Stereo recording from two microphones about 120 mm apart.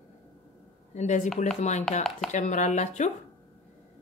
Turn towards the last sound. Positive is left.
turn(degrees=85)